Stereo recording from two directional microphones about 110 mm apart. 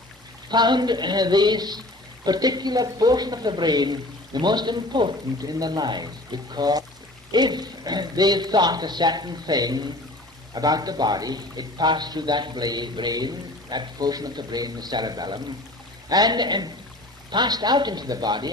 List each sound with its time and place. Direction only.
0.5 s speech: 40° right (ahead or behind)